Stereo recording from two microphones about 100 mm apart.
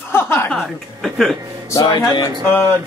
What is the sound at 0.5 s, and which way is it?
Speech, centre (ahead or behind).